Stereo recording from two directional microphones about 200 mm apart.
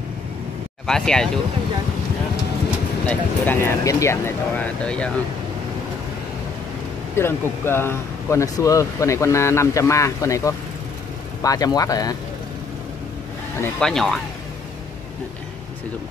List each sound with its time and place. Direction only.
0.8 s speech: 5° left (ahead or behind)
3.1 s speech: 10° left (ahead or behind)
7.2 s speech: 10° left (ahead or behind)
13.6 s speech: 5° left (ahead or behind)